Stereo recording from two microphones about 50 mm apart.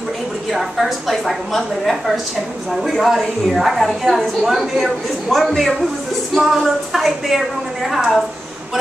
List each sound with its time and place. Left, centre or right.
0.5 s a woman's voice: centre